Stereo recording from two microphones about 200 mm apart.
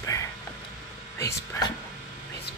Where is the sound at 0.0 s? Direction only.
15° left (ahead or behind).